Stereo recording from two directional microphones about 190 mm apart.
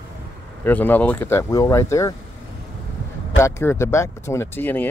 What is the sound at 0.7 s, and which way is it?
Speech, 10° left (ahead or behind).